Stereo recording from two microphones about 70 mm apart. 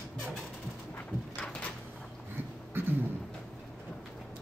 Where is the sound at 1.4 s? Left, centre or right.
Centre.